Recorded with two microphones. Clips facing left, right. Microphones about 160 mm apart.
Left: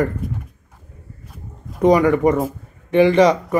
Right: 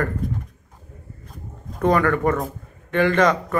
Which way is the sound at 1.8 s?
15° left (ahead or behind).